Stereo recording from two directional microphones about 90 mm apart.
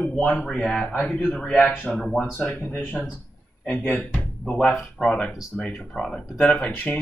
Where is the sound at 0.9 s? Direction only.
20° left (ahead or behind).